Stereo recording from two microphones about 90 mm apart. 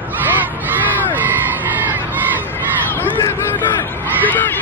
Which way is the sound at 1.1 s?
20° right (ahead or behind).